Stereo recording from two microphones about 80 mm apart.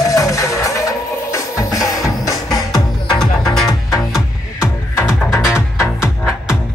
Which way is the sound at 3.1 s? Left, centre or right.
Centre.